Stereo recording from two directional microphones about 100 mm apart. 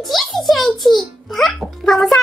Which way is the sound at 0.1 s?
Centre (ahead or behind).